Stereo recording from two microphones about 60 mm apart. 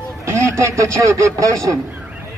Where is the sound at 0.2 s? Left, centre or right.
Right.